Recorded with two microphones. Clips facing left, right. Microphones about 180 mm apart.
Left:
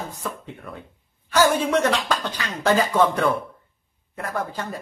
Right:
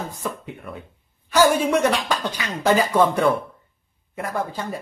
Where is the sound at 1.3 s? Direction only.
10° right (ahead or behind).